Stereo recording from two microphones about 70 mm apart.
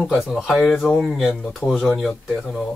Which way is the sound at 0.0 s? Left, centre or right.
Centre.